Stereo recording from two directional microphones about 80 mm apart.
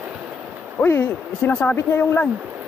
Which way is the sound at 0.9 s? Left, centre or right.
Left.